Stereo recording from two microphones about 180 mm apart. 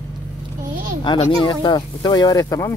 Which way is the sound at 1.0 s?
30° left (ahead or behind).